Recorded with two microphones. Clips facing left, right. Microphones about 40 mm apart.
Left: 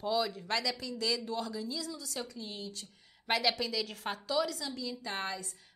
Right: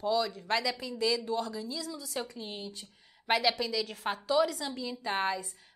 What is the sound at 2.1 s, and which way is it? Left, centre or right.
Speech, right.